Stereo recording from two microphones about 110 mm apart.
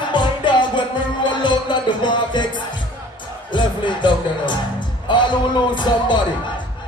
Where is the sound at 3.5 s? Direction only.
45° left (ahead or behind).